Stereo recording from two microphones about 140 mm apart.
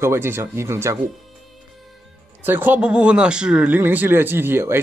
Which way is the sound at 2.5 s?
15° right (ahead or behind).